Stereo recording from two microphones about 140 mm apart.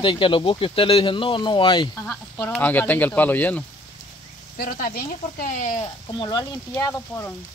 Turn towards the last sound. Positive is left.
turn(degrees=20)  # may be behind; listen again after turning